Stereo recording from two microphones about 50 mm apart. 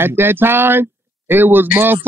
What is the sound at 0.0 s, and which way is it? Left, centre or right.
Speech, right.